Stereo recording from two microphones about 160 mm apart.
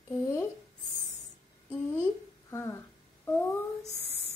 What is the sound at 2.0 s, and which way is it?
Speech, 15° left (ahead or behind).